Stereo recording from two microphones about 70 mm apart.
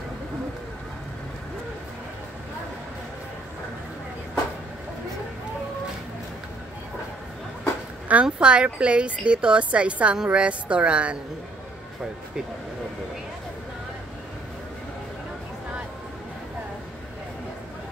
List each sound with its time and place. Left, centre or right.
8.1 s speech: centre